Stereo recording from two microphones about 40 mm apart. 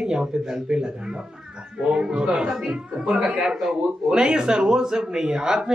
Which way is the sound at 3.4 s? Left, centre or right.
Centre.